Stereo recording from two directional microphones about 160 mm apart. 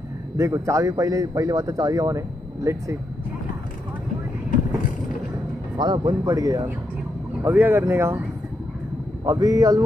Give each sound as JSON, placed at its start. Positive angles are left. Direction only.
{"t": 0.4, "sound": "a man's voice", "side_deg": -20}
{"t": 5.8, "sound": "a man's voice", "side_deg": -25}
{"t": 9.2, "sound": "a man's voice", "side_deg": -20}